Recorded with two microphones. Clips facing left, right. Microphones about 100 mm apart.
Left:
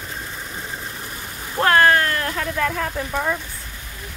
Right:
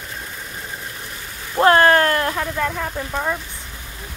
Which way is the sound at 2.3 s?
10° right (ahead or behind).